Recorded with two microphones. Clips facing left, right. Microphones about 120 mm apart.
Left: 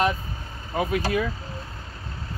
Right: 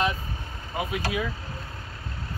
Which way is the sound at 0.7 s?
40° left (ahead or behind).